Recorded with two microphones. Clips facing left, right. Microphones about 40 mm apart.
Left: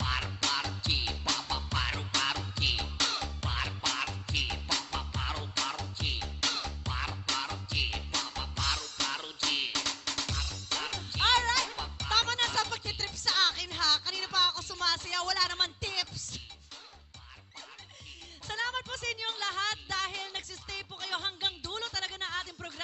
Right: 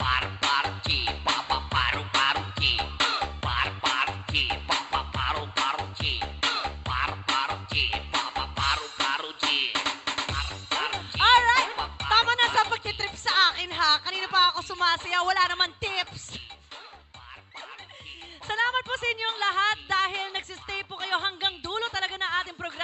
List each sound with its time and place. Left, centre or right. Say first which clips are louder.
0.0 s music: right 7 dB; right
18.5 s music: right 8 dB; right